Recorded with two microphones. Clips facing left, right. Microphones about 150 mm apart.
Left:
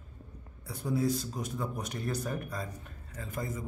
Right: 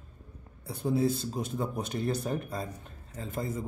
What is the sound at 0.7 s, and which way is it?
Speech, 25° right (ahead or behind).